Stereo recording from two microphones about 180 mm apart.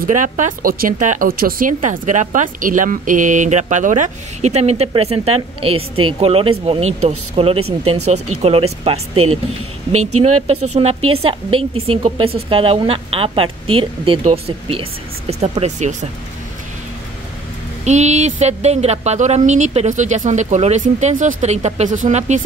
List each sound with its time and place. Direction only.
0.0 s speech: 45° right (ahead or behind)
10.2 s speech: 35° right (ahead or behind)
17.8 s speech: 40° right (ahead or behind)